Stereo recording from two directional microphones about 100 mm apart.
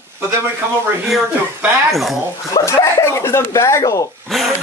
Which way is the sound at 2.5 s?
30° left (ahead or behind).